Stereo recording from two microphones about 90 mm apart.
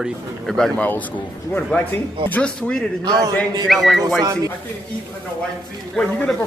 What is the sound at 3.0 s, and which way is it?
Speech, 45° right (ahead or behind).